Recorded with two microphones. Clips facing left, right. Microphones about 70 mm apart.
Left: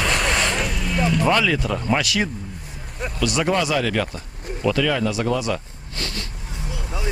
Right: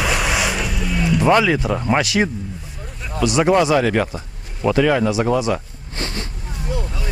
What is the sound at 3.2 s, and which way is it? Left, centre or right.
Speech, right.